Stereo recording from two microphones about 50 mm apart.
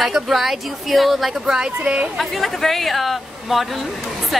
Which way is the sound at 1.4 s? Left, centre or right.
Centre.